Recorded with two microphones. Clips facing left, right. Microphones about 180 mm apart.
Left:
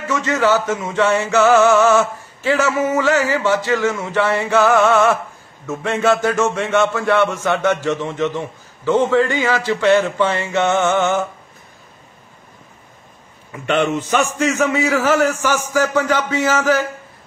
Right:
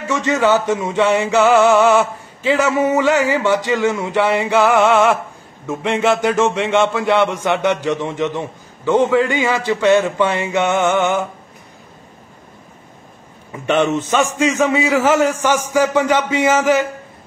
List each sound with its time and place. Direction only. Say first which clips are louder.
0.1 s a man's voice: right 1 dB; 20° right (ahead or behind)
14.1 s a man's voice: right 1 dB; 15° right (ahead or behind)